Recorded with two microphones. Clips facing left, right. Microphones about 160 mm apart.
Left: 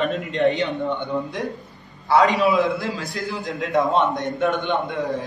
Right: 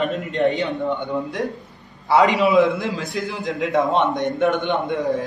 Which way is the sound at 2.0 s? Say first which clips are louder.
Right 1 dB; 25° right (ahead or behind).